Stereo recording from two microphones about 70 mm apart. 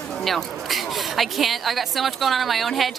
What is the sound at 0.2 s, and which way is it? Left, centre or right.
A woman's voice, centre.